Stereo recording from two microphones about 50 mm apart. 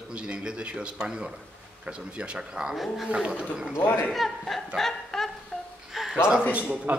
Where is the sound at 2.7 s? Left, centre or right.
Centre.